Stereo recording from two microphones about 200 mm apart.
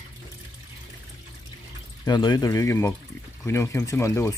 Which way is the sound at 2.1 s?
20° left (ahead or behind).